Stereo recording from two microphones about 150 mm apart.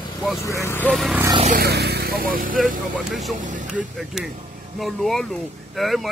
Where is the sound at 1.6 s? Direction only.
90° right; by 2.6 s 70° right (ahead or behind).